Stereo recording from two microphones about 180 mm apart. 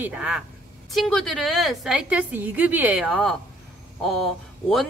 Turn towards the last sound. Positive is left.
turn(degrees=0)  # may be behind; listen again after turning